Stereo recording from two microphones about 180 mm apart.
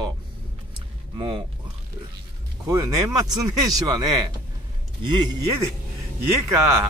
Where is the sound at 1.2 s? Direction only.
25° right (ahead or behind).